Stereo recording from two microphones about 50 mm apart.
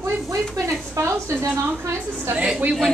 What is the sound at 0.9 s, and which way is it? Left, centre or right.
A woman's voice, right.